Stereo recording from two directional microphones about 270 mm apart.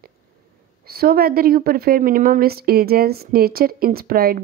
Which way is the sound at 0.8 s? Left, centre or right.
Right.